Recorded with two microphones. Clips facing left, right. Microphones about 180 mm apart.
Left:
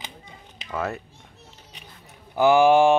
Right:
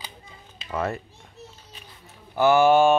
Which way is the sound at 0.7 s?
Centre (ahead or behind).